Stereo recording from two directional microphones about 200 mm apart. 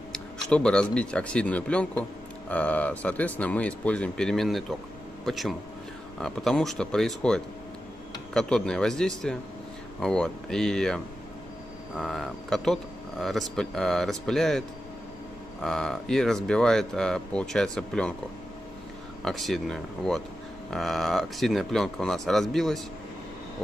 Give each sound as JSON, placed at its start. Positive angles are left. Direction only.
{"t": 0.5, "sound": "speech", "side_deg": 5}
{"t": 15.6, "sound": "speech", "side_deg": 0}
{"t": 19.2, "sound": "speech", "side_deg": 0}